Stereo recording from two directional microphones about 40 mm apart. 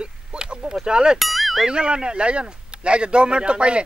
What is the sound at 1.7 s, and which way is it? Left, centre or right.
Speech, right.